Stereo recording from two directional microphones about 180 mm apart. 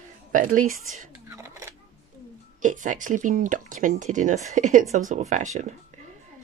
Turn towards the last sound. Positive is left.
turn(degrees=-40)  # may be behind; listen again after turning